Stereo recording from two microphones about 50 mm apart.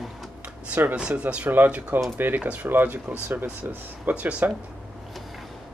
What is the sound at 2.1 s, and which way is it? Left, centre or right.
Speech, right.